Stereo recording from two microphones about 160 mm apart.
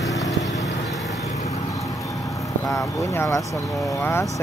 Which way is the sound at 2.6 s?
20° left (ahead or behind).